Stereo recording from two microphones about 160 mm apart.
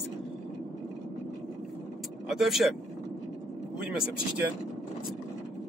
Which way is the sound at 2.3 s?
Centre (ahead or behind).